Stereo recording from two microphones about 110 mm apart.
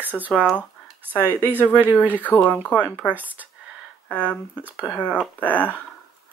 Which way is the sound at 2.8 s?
15° right (ahead or behind).